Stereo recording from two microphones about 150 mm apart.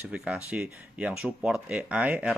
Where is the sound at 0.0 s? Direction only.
5° right (ahead or behind).